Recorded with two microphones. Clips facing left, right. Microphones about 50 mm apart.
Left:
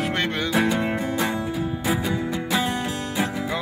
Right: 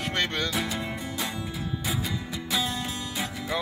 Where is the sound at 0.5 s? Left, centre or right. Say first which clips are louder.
Left 9 dB; left.